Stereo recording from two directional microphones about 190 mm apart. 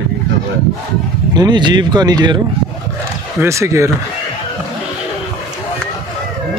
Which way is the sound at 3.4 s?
15° right (ahead or behind).